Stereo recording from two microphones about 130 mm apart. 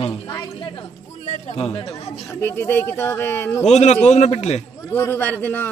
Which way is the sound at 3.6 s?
55° left (ahead or behind).